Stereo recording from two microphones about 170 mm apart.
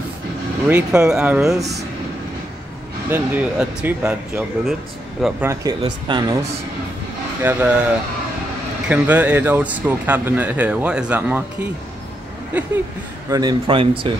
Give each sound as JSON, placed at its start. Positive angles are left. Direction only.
{"t": 0.7, "sound": "speech", "side_deg": -5}
{"t": 3.1, "sound": "speech", "side_deg": -10}
{"t": 5.4, "sound": "speech", "side_deg": -20}
{"t": 7.4, "sound": "speech", "side_deg": -5}
{"t": 13.3, "sound": "speech", "side_deg": -25}